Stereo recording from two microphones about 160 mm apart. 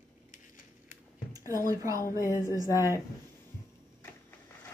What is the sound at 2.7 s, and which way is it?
Speech, 15° right (ahead or behind).